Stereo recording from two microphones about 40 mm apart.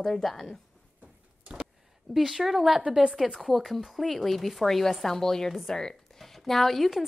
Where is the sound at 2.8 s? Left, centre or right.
Right.